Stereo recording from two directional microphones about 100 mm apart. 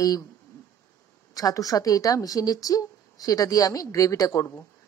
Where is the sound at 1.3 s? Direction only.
35° left (ahead or behind).